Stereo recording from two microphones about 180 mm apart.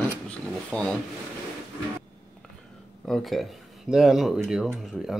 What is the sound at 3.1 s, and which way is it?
Speech, centre (ahead or behind).